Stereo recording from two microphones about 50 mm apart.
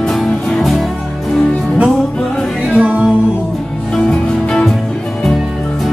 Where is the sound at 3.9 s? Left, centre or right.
Centre.